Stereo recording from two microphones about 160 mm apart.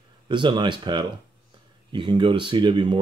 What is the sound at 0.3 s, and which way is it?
Speech, 30° right (ahead or behind).